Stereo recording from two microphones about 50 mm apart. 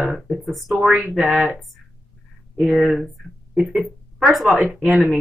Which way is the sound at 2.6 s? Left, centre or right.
Centre.